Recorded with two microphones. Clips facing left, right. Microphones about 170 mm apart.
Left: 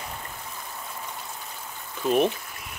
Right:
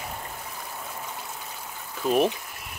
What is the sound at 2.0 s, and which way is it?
Speech, centre (ahead or behind).